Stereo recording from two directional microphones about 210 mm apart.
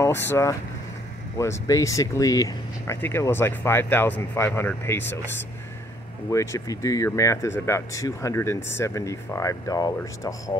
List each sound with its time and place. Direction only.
0.3 s speech: 15° left (ahead or behind)
6.3 s speech: 15° left (ahead or behind)
10.5 s music: 20° left (ahead or behind)